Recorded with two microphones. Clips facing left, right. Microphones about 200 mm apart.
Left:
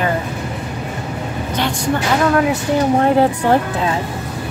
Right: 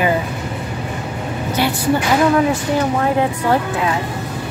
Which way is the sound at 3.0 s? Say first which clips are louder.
Left 3 dB; 30° left (ahead or behind).